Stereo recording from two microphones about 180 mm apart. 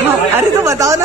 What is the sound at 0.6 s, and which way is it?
Speech, 20° right (ahead or behind).